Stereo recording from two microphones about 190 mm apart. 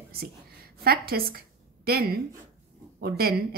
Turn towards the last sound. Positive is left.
turn(degrees=-55)  # may be behind; listen again after turning